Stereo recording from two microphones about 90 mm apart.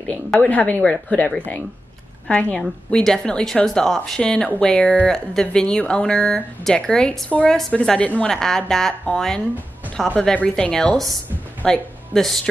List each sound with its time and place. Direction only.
0.4 s a woman's voice: 15° left (ahead or behind)